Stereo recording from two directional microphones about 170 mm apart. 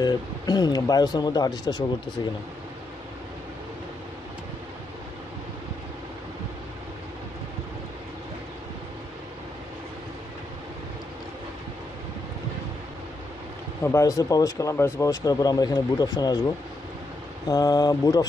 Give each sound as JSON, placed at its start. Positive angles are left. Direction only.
{"t": 0.0, "sound": "speech", "side_deg": 25}
{"t": 13.8, "sound": "speech", "side_deg": 20}
{"t": 17.5, "sound": "speech", "side_deg": 20}